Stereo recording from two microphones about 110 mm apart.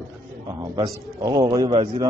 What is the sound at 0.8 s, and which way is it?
Speech, 35° right (ahead or behind).